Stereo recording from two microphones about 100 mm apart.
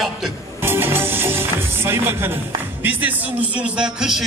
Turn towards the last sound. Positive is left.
turn(degrees=-5)  # may be behind; listen again after turning